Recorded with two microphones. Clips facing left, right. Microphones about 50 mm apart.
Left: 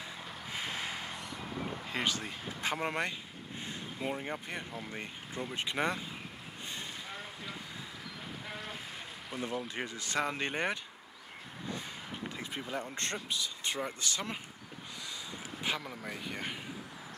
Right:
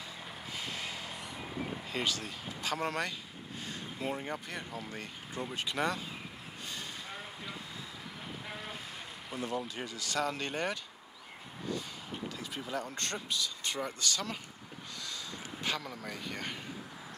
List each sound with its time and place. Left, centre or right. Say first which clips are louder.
0.5 s vehicle: left 2 dB; centre
3.8 s speech: even; centre
8.3 s boat: even; centre
9.3 s speech: even; centre
9.8 s speech: left 1 dB; left
11.7 s vehicle: right 3 dB; left
12.6 s speech: right 1 dB; centre